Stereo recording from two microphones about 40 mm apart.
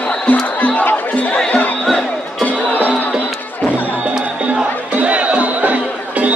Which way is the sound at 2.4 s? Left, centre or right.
Left.